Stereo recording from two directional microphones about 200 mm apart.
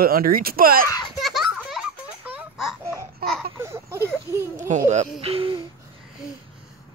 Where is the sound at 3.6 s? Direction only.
15° right (ahead or behind).